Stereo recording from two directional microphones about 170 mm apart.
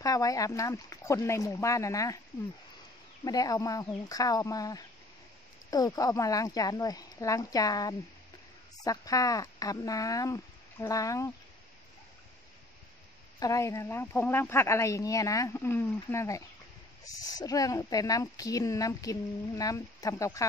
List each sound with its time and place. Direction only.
0.0 s speech: 20° left (ahead or behind)
3.3 s speech: 20° left (ahead or behind)
13.4 s speech: 20° left (ahead or behind)